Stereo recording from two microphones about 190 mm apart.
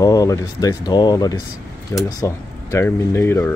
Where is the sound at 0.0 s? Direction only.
20° left (ahead or behind).